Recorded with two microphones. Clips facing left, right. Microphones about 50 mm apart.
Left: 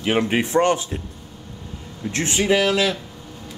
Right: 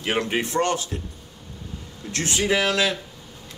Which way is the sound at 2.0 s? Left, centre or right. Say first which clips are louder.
Left 5 dB; left.